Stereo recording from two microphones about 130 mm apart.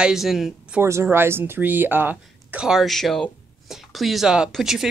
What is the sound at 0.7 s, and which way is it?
Speech, 20° right (ahead or behind).